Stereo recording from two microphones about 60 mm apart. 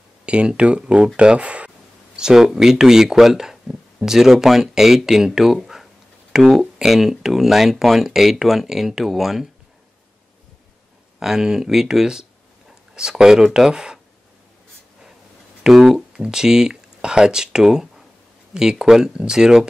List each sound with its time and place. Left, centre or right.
0.2 s speech: centre
11.1 s speech: centre
15.6 s speech: centre